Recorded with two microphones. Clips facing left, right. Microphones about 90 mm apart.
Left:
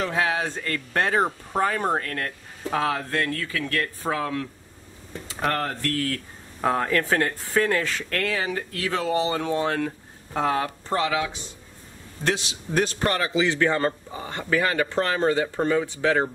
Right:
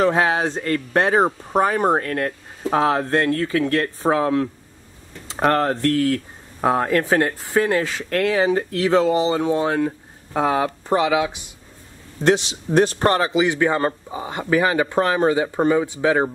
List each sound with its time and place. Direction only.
0.0 s speech: 35° right (ahead or behind); by 11.5 s 15° right (ahead or behind)
12.2 s speech: 25° right (ahead or behind)
13.3 s speech: 15° right (ahead or behind)